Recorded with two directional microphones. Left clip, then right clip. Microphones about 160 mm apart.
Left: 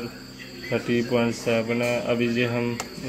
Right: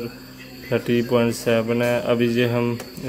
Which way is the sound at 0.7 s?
15° right (ahead or behind).